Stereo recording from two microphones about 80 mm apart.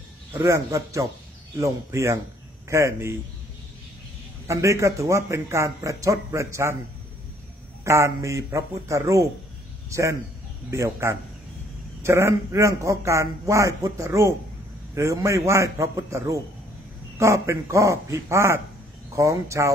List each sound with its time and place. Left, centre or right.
0.4 s a man's voice: right
4.5 s a man's voice: right
7.8 s a man's voice: right